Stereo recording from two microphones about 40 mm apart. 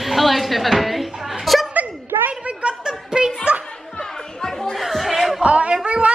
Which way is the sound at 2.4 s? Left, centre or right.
Right.